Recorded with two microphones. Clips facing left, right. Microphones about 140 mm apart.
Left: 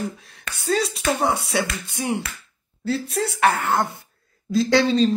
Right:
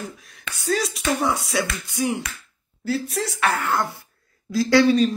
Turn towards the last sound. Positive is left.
turn(degrees=25)  # may be behind; listen again after turning